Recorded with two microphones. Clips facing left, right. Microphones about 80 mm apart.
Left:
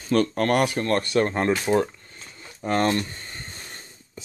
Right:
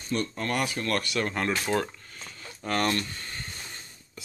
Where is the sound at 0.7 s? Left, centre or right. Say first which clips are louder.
Left 7 dB; left.